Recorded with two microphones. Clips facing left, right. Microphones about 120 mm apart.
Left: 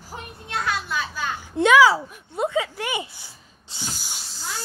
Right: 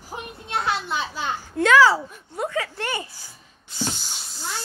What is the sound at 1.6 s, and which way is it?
Speech, 15° left (ahead or behind).